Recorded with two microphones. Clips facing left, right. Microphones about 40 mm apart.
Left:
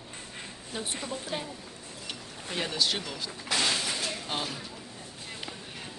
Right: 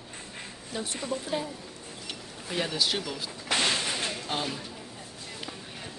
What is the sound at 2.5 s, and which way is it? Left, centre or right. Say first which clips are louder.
Speech: right 1 dB; centre.